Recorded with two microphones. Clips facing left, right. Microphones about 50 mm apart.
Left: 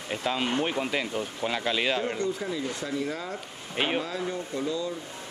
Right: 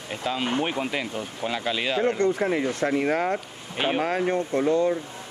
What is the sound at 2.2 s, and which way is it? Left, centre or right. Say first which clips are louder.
Speech: right 7 dB; right.